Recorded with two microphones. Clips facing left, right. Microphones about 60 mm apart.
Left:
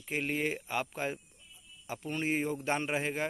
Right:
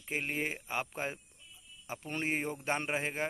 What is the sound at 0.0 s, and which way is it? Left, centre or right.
Speech, centre.